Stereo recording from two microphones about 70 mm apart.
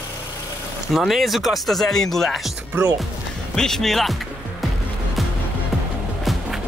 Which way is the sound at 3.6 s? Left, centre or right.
Centre.